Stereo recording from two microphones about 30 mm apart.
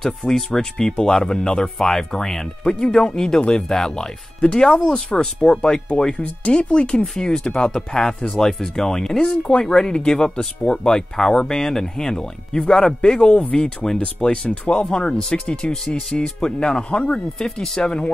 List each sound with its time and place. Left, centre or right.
0.0 s speech: centre
1.8 s speech: centre
2.7 s speech: left
7.2 s speech: centre; by 14.9 s left
14.9 s speech: left